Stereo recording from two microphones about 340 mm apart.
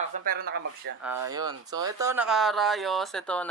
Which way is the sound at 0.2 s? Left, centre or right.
Right.